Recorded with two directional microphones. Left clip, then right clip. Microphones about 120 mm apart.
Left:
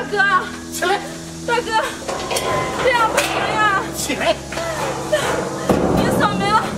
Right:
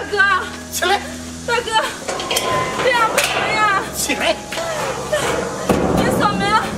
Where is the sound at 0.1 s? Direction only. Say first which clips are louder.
Right 1 dB; 5° right (ahead or behind).